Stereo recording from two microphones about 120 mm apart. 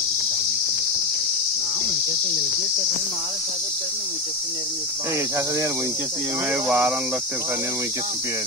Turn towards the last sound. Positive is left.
turn(degrees=-10)  # may be behind; listen again after turning